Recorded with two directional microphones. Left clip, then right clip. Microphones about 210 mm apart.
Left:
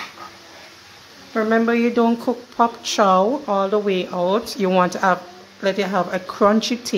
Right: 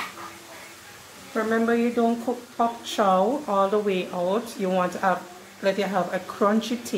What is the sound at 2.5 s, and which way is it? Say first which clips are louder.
Speech: left 6 dB; 30° left (ahead or behind).